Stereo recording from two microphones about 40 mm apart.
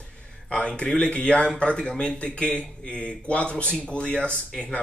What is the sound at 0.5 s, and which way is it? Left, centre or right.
Speech, left.